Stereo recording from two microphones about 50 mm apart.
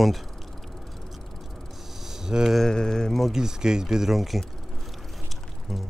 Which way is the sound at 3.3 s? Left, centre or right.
Centre.